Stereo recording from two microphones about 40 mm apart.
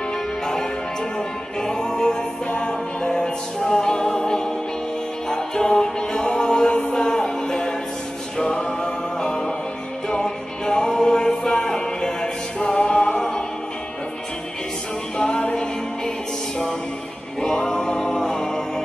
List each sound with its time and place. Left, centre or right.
1.6 s music: centre
15.1 s music: left
17.4 s music: centre